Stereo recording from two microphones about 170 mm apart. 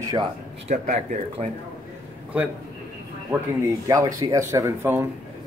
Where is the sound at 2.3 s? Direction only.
10° right (ahead or behind).